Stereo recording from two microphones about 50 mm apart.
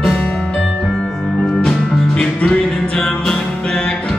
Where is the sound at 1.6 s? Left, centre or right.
Centre.